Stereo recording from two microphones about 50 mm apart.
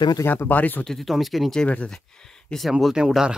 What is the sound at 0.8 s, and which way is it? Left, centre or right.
Speech, centre.